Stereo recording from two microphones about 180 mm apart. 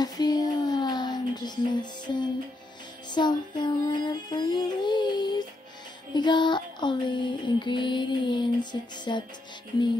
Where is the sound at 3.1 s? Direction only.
25° left (ahead or behind).